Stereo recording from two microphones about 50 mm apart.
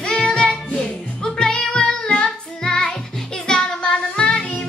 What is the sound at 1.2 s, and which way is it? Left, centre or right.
Child singing, centre.